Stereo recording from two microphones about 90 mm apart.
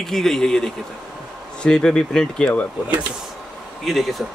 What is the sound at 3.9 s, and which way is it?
Speech, centre (ahead or behind).